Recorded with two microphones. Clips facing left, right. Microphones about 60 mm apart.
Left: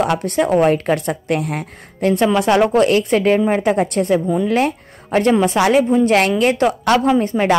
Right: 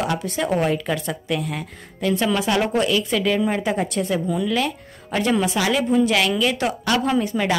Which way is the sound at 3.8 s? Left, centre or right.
Left.